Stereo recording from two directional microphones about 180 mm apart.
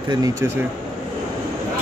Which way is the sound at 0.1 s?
20° right (ahead or behind).